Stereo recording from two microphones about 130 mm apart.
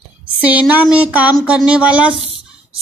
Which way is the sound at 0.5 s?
10° right (ahead or behind).